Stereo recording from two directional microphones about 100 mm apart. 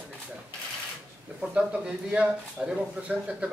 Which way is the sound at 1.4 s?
10° right (ahead or behind).